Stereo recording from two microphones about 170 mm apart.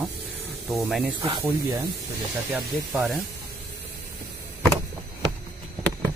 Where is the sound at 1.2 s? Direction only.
35° right (ahead or behind).